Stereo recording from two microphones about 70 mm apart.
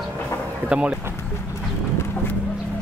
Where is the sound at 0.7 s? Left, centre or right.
Centre.